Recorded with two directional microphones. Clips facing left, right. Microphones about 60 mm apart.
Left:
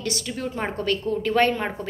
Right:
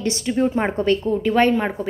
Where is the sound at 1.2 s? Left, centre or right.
Centre.